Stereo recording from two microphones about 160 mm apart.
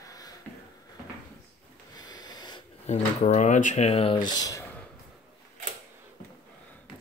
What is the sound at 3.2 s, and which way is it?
Speech, 50° left (ahead or behind).